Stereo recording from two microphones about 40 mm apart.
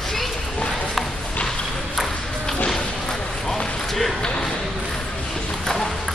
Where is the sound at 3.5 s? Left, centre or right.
Centre.